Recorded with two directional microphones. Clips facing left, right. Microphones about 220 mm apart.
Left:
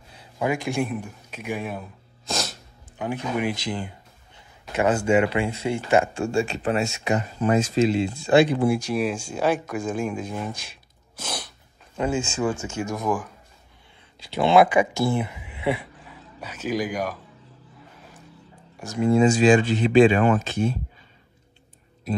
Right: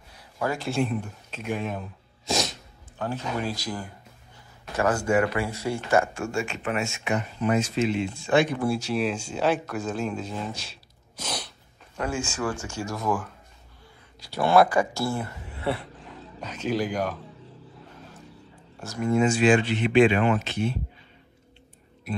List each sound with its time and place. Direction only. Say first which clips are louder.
0.2 s speech: left 3 dB; 15° left (ahead or behind)
2.2 s sneeze: right 3 dB; centre (ahead or behind)
3.0 s speech: left 3 dB; 15° left (ahead or behind); by 8.6 s 30° left (ahead or behind)
8.6 s speech: left 3 dB; 15° left (ahead or behind)
10.7 s gasp: right 1 dB; 10° left (ahead or behind)
12.0 s speech: left 4 dB; 25° left (ahead or behind)
14.2 s speech: left 2 dB; 20° left (ahead or behind)
18.8 s speech: left 5 dB; 20° left (ahead or behind)
19.0 s speech: left 4 dB; 30° left (ahead or behind)
20.0 s speech: left 3 dB; 45° left (ahead or behind)